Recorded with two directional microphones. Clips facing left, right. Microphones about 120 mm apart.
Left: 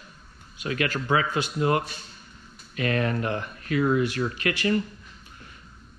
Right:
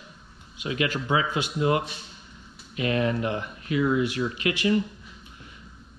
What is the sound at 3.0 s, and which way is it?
Speech, 15° right (ahead or behind).